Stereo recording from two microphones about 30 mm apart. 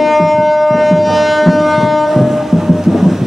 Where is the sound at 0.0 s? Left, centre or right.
Centre.